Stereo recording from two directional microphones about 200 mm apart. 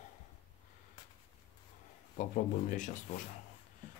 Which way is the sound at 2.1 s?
40° left (ahead or behind).